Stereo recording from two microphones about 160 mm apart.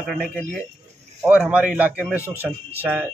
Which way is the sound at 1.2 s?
5° right (ahead or behind).